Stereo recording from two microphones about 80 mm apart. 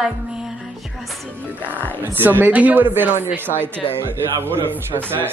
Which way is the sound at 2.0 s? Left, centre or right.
Right.